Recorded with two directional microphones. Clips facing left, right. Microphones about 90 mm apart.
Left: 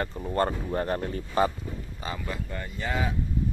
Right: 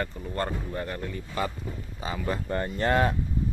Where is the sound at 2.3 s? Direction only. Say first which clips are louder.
Right 6 dB; 50° right (ahead or behind).